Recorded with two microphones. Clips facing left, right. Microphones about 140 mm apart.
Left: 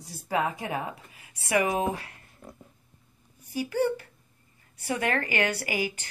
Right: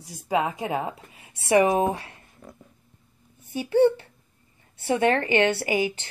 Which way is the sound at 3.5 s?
25° right (ahead or behind).